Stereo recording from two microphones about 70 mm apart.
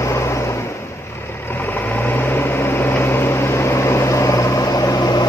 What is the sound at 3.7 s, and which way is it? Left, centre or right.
Vehicle, left.